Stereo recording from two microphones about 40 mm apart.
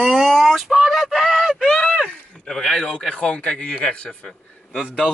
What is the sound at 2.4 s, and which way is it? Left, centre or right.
Speech, centre.